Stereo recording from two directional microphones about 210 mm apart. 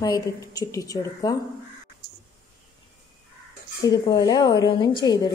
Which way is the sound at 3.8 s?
20° left (ahead or behind).